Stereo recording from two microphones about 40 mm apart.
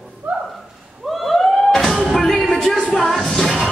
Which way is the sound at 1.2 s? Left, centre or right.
Centre.